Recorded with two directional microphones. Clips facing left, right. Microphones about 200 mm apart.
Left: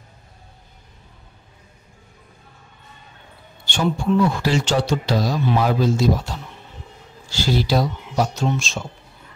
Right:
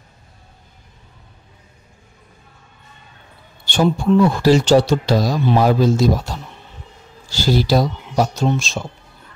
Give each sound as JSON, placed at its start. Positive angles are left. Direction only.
{"t": 3.6, "sound": "speech", "side_deg": -35}